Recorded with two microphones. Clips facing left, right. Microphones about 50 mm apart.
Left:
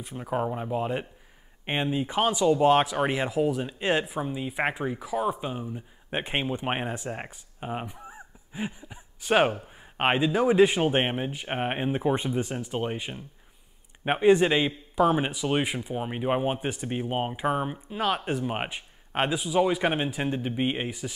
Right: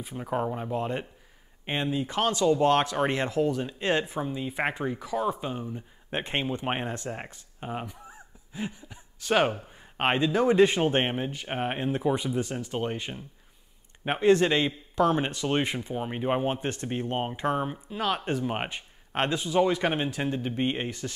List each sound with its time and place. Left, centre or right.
0.0 s speech: centre
1.7 s speech: centre
12.5 s speech: centre